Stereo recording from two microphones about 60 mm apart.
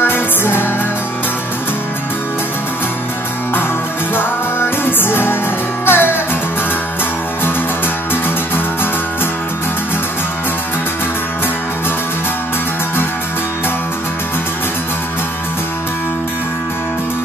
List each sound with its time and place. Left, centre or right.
0.0 s music: left
4.1 s music: left